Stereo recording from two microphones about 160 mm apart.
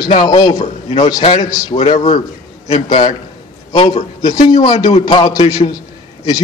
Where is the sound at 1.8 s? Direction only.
45° left (ahead or behind).